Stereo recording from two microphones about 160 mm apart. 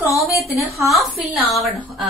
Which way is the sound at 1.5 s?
Centre (ahead or behind).